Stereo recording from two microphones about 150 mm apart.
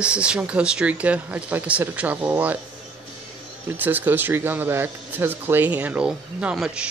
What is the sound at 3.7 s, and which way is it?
Speech, 10° right (ahead or behind).